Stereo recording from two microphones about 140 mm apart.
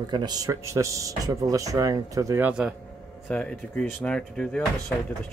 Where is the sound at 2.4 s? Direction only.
5° right (ahead or behind).